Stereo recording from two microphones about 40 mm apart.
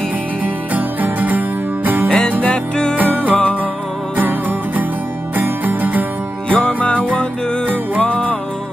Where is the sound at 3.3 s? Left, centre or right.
Left.